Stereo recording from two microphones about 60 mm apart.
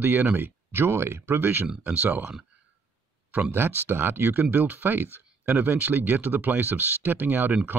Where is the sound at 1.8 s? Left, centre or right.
Right.